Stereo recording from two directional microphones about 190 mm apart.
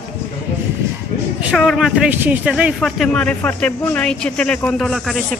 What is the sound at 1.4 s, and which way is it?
Speech, centre (ahead or behind).